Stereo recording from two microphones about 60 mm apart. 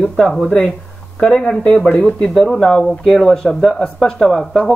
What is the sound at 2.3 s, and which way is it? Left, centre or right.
Speech, centre.